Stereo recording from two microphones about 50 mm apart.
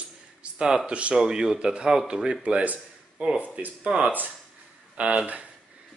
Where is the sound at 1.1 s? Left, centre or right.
Centre.